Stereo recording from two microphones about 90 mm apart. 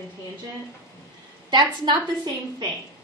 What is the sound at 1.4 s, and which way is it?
A woman's voice, 50° right (ahead or behind).